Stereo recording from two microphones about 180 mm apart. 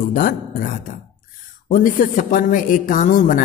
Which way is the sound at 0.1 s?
50° left (ahead or behind).